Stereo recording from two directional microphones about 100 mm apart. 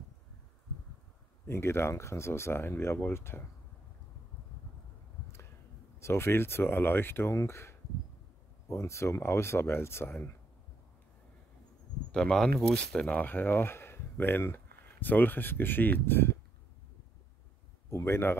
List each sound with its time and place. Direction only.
1.5 s speech: 25° left (ahead or behind)
5.9 s speech: 25° left (ahead or behind)
12.1 s speech: 5° left (ahead or behind)
17.8 s speech: 25° left (ahead or behind)